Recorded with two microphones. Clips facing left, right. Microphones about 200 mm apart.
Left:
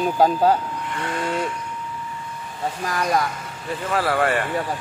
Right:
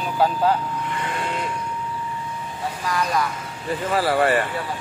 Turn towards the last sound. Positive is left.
turn(degrees=0)  # may be behind; listen again after turning